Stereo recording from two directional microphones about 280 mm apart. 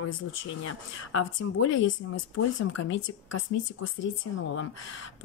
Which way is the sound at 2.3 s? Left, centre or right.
Left.